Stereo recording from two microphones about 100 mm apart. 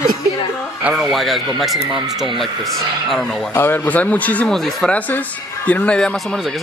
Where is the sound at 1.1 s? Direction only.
Centre (ahead or behind).